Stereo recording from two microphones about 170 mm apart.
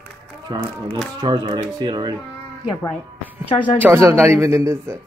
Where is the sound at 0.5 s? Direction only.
25° right (ahead or behind).